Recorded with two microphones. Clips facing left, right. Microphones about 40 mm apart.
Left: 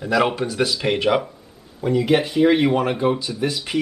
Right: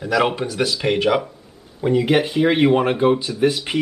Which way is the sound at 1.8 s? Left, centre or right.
Centre.